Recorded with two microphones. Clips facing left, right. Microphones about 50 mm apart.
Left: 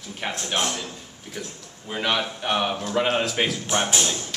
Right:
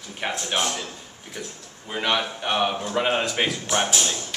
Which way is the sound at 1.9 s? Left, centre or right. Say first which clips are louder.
Right 1 dB; centre.